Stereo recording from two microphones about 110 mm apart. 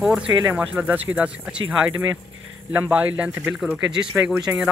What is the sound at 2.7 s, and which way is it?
Speech, 15° right (ahead or behind).